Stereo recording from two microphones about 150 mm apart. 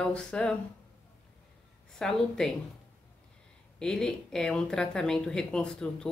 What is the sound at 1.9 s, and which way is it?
Speech, 5° left (ahead or behind).